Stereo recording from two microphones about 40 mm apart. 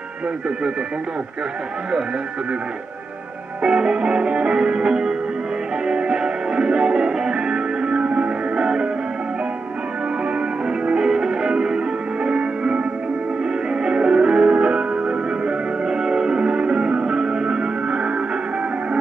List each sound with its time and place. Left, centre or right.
3.6 s music: centre
10.9 s music: centre
13.8 s music: right